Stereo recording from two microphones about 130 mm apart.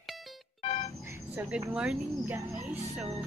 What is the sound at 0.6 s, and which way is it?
Music, 50° left (ahead or behind).